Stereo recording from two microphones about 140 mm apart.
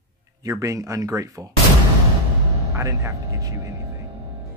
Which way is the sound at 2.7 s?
20° right (ahead or behind).